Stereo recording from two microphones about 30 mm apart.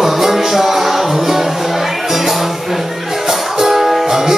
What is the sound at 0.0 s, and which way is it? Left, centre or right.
Music, centre.